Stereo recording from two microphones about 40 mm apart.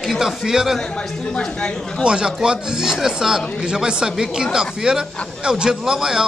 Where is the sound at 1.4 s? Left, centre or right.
Centre.